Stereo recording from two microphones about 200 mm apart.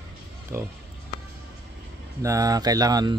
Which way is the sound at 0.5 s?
15° right (ahead or behind).